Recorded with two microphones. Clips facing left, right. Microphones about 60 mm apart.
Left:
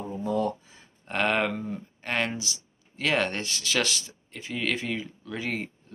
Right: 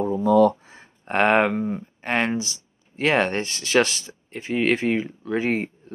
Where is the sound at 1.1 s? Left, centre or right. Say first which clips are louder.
Right 7 dB; right.